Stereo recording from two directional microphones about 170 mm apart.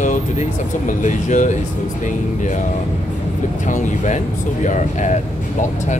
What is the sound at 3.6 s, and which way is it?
Speech, 45° left (ahead or behind).